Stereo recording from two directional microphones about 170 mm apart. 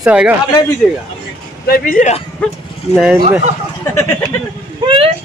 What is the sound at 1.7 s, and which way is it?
Speech, 50° left (ahead or behind).